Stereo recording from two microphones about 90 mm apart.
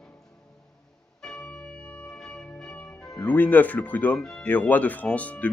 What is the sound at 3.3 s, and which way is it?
Speech, 20° left (ahead or behind).